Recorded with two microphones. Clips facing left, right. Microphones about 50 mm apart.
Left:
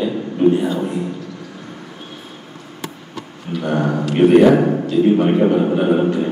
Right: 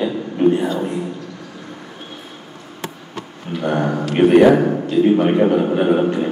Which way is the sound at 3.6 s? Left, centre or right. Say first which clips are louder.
Even; centre.